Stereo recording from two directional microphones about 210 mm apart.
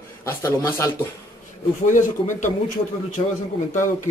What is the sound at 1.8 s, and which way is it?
Speech, 35° left (ahead or behind).